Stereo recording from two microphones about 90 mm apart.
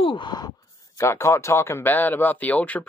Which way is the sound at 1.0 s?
30° left (ahead or behind).